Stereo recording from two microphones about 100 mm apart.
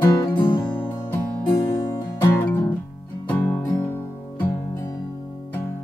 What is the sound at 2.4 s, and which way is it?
Music, 20° left (ahead or behind).